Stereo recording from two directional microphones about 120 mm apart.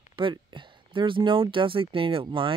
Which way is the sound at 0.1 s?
45° right (ahead or behind).